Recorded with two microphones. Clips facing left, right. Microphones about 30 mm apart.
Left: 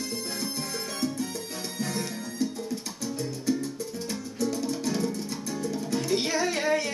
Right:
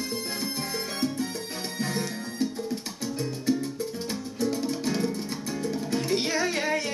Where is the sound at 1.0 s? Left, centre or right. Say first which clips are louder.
Right 1 dB; right.